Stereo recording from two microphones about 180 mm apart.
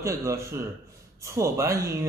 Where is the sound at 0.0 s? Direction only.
15° right (ahead or behind).